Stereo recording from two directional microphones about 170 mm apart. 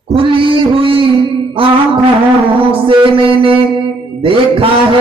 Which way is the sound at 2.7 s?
30° right (ahead or behind).